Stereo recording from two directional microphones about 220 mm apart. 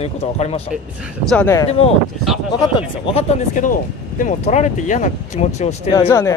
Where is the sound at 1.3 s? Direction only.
10° left (ahead or behind).